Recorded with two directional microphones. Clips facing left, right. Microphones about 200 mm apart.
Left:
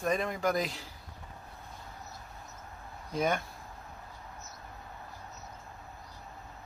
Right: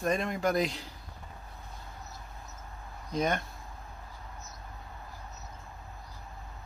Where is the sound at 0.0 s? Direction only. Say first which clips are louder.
Right 1 dB; centre (ahead or behind).